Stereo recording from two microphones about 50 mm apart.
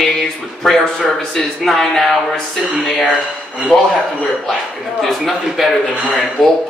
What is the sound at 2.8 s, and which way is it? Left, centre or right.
Speech, centre.